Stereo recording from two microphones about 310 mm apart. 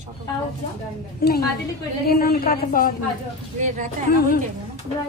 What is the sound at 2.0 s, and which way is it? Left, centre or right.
Speech, left.